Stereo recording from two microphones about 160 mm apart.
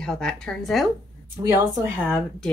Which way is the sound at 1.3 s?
15° right (ahead or behind).